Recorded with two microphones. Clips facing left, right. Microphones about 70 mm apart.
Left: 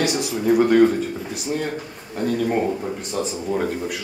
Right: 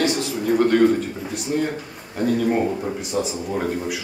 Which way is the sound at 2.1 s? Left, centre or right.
Centre.